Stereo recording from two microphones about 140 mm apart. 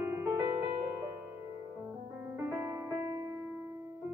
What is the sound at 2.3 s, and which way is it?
Music, 15° right (ahead or behind).